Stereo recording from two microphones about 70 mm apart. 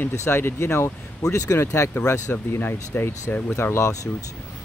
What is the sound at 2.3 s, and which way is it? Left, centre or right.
Speech, left.